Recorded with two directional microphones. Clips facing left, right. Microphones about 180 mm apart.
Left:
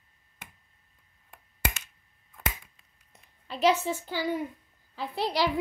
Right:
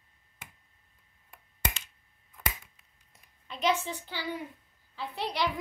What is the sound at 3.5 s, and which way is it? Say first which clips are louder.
A woman's voice: left 5 dB; 35° left (ahead or behind).